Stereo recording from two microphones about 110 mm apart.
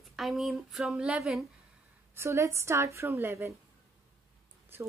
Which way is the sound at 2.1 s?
25° right (ahead or behind).